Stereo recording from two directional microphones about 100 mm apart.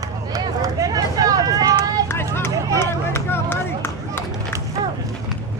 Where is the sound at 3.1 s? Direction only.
25° left (ahead or behind).